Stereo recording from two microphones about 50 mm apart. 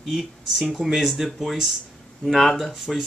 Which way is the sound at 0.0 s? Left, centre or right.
Centre.